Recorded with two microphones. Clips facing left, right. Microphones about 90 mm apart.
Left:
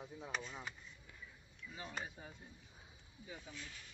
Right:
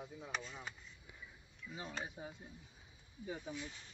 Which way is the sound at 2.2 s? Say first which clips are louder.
Right 5 dB; 20° right (ahead or behind).